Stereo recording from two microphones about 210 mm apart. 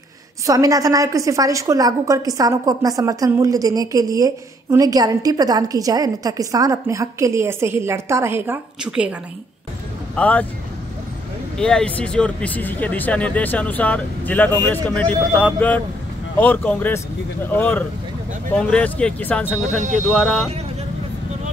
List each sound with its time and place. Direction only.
0.5 s a woman's voice: 15° right (ahead or behind)
10.1 s speech: 5° left (ahead or behind)
11.5 s speech: 5° left (ahead or behind)